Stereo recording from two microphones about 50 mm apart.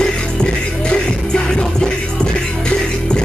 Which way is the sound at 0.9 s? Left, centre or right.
Centre.